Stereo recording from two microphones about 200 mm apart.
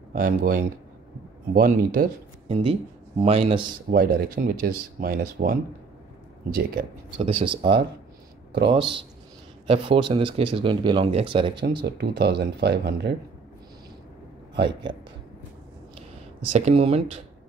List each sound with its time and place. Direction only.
0.1 s speech: 45° right (ahead or behind)
2.4 s speech: 30° right (ahead or behind)
3.9 s speech: 45° right (ahead or behind)
7.2 s speech: 25° right (ahead or behind)
8.6 s speech: 25° right (ahead or behind)
11.8 s speech: 55° right (ahead or behind)
14.7 s speech: 25° right (ahead or behind)
16.5 s speech: 35° right (ahead or behind)